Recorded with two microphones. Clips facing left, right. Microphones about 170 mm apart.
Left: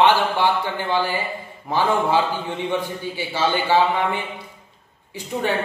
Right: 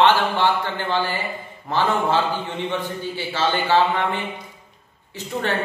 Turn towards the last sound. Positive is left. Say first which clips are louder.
# left 1 dB
turn(degrees=10)  # may be behind; listen again after turning